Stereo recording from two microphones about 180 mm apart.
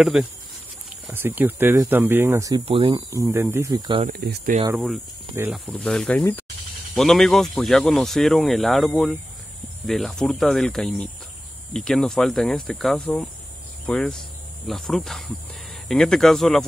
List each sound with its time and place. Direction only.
0.0 s speech: centre (ahead or behind)
2.6 s speech: 30° right (ahead or behind)
3.1 s speech: 15° right (ahead or behind)
4.1 s speech: 55° right (ahead or behind)
4.7 s speech: centre (ahead or behind)
5.3 s speech: 10° right (ahead or behind)
5.7 s speech: 5° left (ahead or behind)